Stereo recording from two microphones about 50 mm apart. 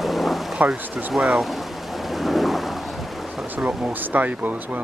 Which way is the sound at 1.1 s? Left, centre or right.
Centre.